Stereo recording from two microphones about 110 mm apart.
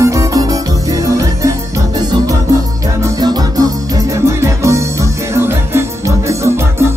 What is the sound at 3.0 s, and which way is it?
Music, 35° right (ahead or behind).